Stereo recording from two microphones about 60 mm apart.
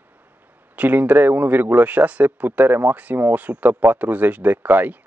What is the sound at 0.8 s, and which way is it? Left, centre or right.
Speech, right.